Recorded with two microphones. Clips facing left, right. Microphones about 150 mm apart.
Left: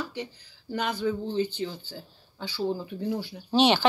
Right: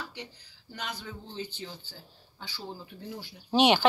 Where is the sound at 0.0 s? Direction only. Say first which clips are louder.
Left 8 dB; 50° left (ahead or behind).